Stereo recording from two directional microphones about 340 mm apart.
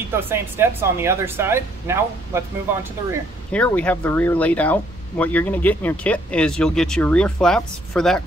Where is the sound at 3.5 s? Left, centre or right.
Centre.